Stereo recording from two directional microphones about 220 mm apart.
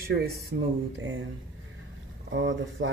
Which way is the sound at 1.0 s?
60° right (ahead or behind).